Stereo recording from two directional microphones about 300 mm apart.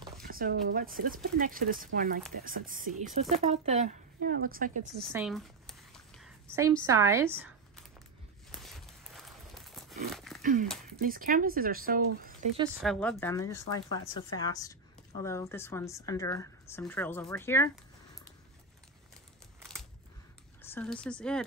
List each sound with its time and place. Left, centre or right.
0.2 s speech: right
5.1 s a sound: centre
6.9 s a woman's voice: centre
8.5 s a sound: centre
10.4 s speech: right
12.8 s a woman's voice: centre
20.6 s speech: centre